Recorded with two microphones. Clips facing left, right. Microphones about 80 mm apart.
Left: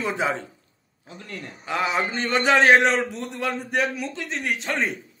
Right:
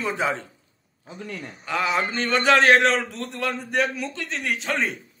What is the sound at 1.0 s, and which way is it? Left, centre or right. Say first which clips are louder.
Speech: right 5 dB; centre.